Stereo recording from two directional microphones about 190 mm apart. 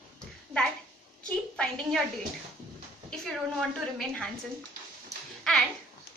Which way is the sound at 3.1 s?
5° left (ahead or behind).